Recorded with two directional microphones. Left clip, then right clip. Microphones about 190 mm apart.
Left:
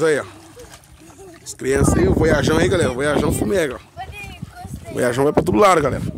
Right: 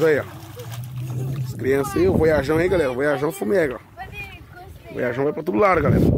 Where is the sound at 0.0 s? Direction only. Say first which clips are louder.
Left 1 dB; 5° left (ahead or behind).